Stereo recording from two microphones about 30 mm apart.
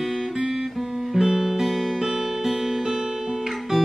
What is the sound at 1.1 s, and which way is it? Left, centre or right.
Music, centre.